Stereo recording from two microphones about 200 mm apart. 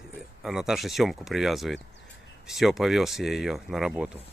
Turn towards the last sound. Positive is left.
turn(degrees=0)  # may be behind; listen again after turning